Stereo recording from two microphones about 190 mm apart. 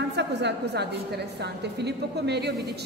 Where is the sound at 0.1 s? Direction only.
65° right (ahead or behind).